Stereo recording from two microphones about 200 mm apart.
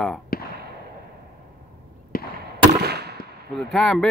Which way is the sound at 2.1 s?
45° left (ahead or behind).